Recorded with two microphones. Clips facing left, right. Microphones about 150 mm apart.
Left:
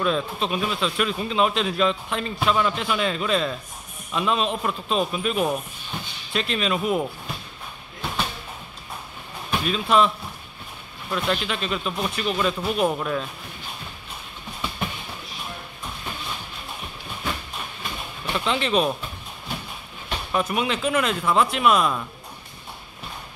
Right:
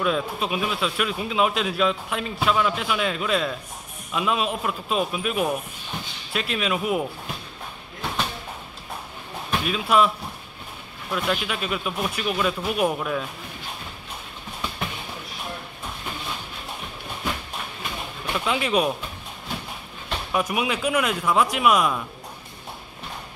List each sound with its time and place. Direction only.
0.0 s a man's voice: 5° right (ahead or behind)
9.5 s speech: 5° right (ahead or behind)
18.2 s speech: 10° right (ahead or behind)
20.3 s speech: 10° right (ahead or behind)